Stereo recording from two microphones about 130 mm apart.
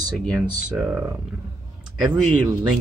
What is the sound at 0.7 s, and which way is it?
Speech, 15° right (ahead or behind).